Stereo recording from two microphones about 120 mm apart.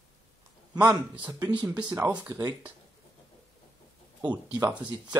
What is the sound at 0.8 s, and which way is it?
A man's voice, 10° right (ahead or behind).